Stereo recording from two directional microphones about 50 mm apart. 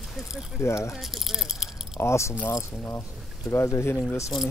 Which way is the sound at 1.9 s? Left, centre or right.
Left.